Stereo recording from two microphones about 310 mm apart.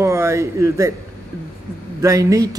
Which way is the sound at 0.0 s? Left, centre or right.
Centre.